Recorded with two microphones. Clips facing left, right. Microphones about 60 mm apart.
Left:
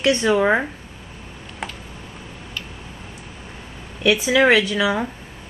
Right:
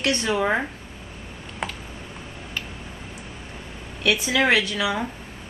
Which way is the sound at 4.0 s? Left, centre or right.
Left.